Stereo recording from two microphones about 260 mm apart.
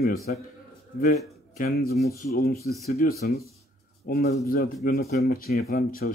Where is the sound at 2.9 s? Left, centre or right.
Left.